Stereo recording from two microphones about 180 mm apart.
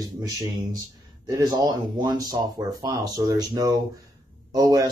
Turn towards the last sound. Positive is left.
turn(degrees=-20)  # may be behind; listen again after turning